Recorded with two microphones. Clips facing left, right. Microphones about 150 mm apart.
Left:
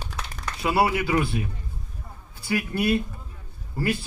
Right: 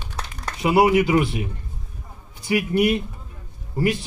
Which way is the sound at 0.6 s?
20° right (ahead or behind).